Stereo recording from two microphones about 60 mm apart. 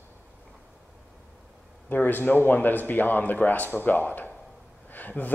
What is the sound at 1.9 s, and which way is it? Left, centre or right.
A man's voice, left.